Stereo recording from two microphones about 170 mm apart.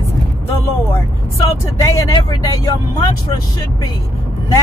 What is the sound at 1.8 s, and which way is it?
Speech, 20° left (ahead or behind).